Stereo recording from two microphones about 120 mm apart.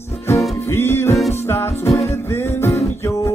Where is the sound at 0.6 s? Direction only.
20° left (ahead or behind).